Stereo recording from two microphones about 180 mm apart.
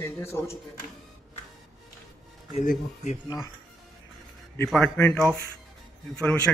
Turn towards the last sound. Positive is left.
turn(degrees=5)  # may be behind; listen again after turning